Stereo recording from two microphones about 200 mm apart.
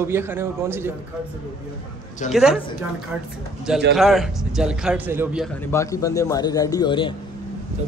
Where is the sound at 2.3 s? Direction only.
Centre (ahead or behind).